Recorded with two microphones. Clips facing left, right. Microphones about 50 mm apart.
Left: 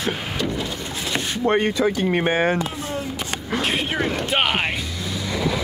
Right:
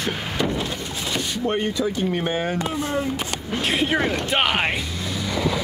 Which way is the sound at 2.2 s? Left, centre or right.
Left.